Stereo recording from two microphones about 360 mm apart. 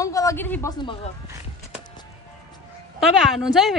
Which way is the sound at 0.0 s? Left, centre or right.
Centre.